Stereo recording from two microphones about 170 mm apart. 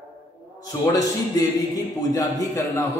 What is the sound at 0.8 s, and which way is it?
A man's voice, 20° left (ahead or behind).